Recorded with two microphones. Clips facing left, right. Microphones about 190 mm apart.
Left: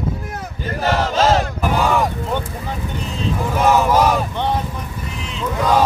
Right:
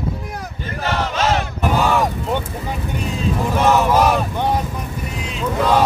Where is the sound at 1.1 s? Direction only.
35° left (ahead or behind).